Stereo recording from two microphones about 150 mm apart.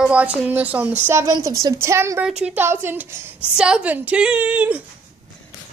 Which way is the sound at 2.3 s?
5° right (ahead or behind).